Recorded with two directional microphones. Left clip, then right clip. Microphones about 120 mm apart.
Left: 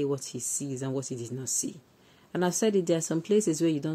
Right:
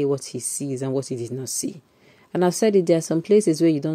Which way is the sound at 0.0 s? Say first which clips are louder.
Right 7 dB; 25° right (ahead or behind).